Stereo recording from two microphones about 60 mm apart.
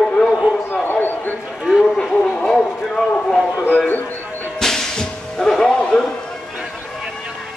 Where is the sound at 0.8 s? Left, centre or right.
Left.